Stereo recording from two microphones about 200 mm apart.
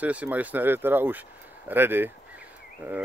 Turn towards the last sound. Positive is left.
turn(degrees=-10)  # may be behind; listen again after turning